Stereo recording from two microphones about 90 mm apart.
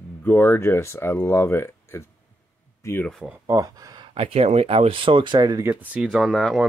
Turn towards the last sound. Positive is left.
turn(degrees=0)  # may be behind; listen again after turning